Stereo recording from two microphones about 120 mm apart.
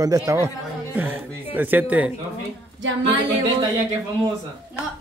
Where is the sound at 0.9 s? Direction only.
15° right (ahead or behind).